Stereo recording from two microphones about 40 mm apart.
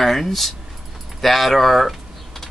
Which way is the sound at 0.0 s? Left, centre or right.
Centre.